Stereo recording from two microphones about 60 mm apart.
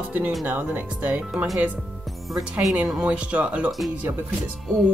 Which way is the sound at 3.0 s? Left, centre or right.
Right.